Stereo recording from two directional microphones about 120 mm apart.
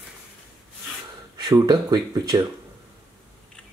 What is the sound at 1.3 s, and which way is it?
Speech, 35° right (ahead or behind).